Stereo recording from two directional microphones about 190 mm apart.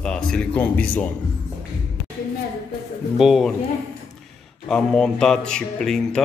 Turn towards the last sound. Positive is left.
turn(degrees=5)  # may be behind; listen again after turning